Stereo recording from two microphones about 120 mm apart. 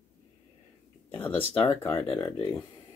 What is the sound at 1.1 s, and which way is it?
Speech, 15° left (ahead or behind).